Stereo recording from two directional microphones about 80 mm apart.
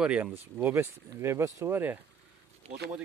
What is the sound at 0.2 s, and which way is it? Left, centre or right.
Speech, right.